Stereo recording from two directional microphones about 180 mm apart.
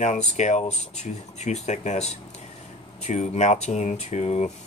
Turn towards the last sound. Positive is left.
turn(degrees=40)  # may be behind; listen again after turning